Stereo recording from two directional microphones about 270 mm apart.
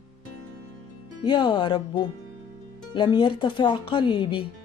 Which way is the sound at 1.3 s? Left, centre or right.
Centre.